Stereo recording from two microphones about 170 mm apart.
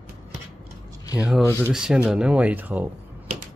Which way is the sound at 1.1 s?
5° right (ahead or behind).